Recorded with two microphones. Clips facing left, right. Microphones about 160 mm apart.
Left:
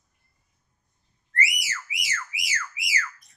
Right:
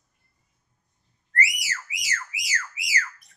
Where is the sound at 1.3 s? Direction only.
35° right (ahead or behind).